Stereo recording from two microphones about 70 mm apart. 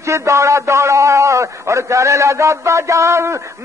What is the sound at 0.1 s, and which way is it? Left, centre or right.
A man's voice, right.